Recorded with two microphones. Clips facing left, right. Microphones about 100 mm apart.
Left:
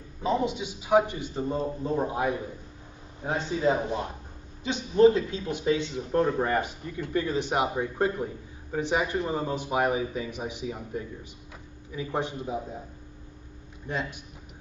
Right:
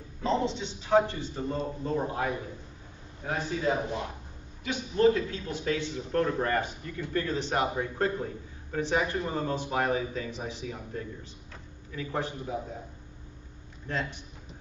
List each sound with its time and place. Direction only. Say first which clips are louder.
0.2 s a man's voice: left 1 dB; 10° left (ahead or behind)
13.8 s a man's voice: left 1 dB; 15° left (ahead or behind)